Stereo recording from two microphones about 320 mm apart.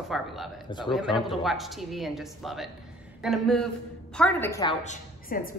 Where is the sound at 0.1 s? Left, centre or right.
Centre.